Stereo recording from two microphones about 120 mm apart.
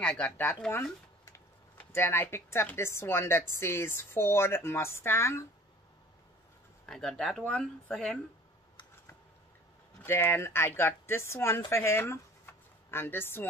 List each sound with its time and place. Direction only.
0.0 s speech: 10° left (ahead or behind)
6.9 s speech: 5° left (ahead or behind)
10.0 s speech: 20° left (ahead or behind)